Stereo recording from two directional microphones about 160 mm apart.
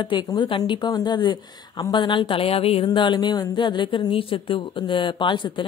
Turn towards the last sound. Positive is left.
turn(degrees=30)  # may be behind; listen again after turning